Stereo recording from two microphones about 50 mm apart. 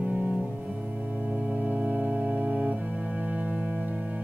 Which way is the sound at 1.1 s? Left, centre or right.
Right.